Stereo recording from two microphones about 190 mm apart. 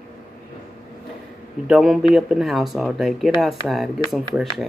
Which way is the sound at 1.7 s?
Centre (ahead or behind).